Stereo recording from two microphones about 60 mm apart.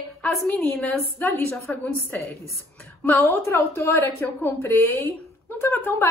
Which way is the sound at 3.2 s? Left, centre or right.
Left.